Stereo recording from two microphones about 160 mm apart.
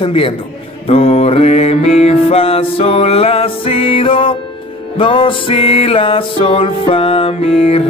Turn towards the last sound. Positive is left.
turn(degrees=40)  # may be behind; listen again after turning